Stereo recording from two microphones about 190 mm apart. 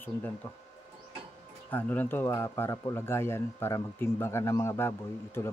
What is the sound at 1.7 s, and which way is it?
Speech, 10° left (ahead or behind).